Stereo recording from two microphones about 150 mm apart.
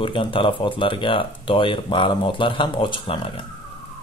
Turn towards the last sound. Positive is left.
turn(degrees=35)  # may be behind; listen again after turning